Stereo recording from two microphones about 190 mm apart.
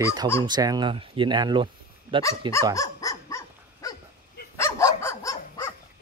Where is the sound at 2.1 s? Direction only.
10° right (ahead or behind).